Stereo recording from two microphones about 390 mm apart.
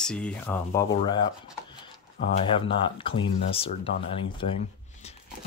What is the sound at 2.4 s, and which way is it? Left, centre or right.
Speech, centre.